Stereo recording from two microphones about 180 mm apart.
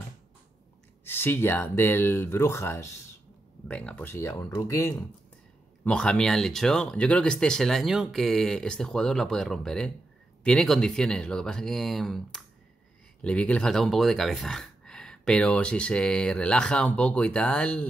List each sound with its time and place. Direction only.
1.0 s speech: 10° left (ahead or behind)
5.9 s speech: 5° left (ahead or behind)